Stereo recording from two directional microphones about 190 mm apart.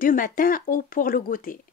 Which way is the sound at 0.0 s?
45° left (ahead or behind).